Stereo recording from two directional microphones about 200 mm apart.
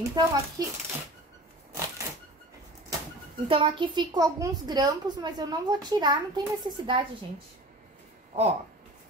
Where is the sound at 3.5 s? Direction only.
25° right (ahead or behind).